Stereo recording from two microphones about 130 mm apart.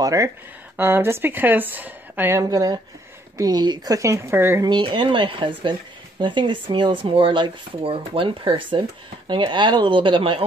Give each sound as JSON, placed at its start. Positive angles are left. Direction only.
{"t": 0.0, "sound": "speech", "side_deg": -25}
{"t": 2.5, "sound": "speech", "side_deg": -30}
{"t": 4.6, "sound": "speech", "side_deg": -35}